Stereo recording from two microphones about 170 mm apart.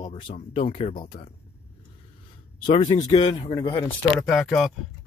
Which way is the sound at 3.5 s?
25° left (ahead or behind).